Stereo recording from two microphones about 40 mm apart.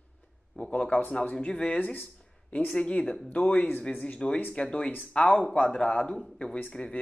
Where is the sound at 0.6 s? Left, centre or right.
Left.